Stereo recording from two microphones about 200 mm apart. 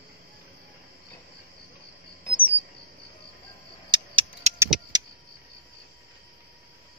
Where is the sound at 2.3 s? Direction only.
10° right (ahead or behind).